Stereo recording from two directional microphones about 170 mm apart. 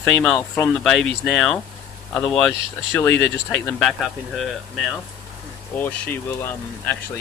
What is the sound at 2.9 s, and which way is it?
Speech, 10° left (ahead or behind).